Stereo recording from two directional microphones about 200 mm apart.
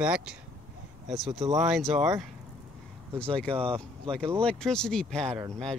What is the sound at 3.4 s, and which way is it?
Speech, 25° right (ahead or behind).